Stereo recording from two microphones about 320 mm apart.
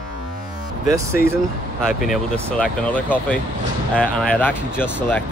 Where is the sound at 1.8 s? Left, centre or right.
Centre.